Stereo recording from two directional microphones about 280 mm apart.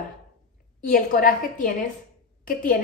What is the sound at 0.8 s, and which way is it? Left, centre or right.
A woman's voice, left.